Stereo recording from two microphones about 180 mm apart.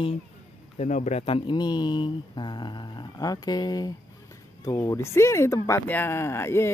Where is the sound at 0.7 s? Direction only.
40° left (ahead or behind).